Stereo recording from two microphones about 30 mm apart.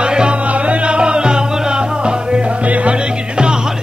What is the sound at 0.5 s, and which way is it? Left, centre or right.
Music, right.